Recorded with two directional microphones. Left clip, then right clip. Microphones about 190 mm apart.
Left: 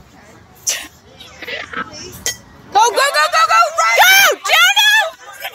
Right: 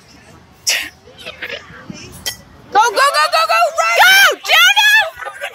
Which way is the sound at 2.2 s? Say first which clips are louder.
Left 1 dB; 45° right (ahead or behind).